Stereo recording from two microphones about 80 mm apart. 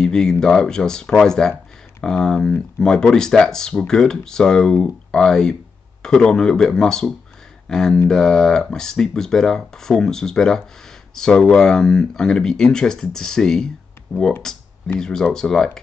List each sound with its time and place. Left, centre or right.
0.0 s speech: centre
14.1 s speech: centre
14.5 s speech: centre